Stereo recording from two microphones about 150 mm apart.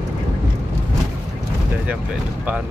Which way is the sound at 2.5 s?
10° right (ahead or behind).